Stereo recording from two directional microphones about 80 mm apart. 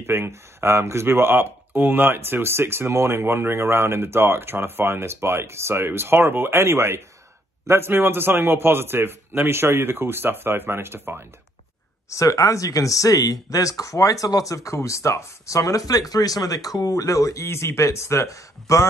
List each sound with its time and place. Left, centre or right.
0.0 s a man's voice: right
12.1 s speech: left